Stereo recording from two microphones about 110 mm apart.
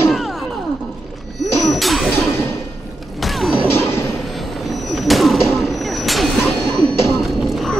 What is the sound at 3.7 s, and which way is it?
Music, 25° left (ahead or behind).